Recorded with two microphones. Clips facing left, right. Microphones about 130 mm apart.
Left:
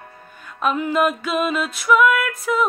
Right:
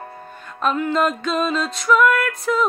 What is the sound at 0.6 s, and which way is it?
Music, 10° left (ahead or behind).